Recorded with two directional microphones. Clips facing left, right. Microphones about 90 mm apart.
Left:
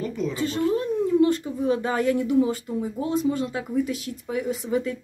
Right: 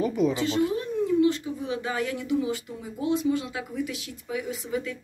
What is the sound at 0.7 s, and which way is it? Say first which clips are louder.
Speech: left 3 dB; 45° left (ahead or behind).